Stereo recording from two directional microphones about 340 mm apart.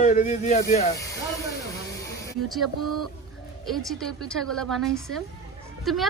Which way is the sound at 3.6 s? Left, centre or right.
Centre.